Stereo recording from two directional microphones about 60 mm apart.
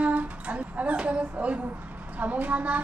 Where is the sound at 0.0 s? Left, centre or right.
Right.